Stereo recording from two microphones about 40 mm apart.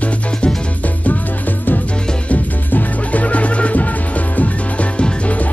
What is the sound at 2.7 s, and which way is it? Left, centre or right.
Music, left.